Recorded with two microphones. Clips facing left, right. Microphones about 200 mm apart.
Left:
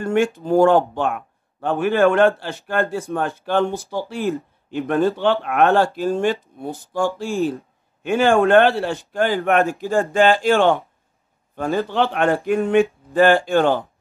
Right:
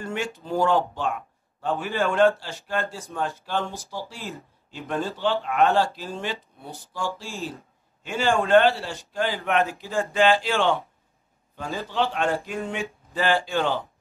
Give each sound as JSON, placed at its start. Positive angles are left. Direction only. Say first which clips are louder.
{"t": 0.0, "sound": "speech", "louder": "left 11 dB", "side_deg": 55}